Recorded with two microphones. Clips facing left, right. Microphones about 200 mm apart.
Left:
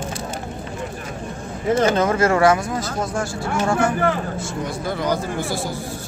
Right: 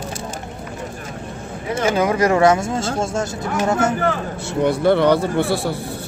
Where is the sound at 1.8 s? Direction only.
10° right (ahead or behind).